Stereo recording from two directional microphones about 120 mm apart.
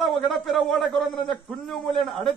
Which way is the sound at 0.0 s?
Centre (ahead or behind).